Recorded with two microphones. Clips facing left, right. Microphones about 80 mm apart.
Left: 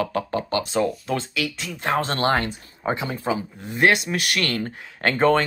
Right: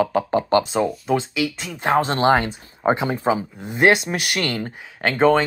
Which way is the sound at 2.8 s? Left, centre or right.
Right.